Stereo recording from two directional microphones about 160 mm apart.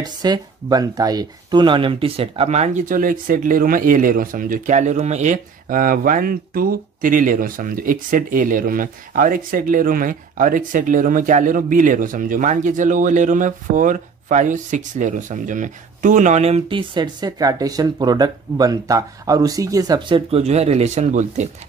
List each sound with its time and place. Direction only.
0.0 s speech: 25° right (ahead or behind); by 21.5 s 45° right (ahead or behind)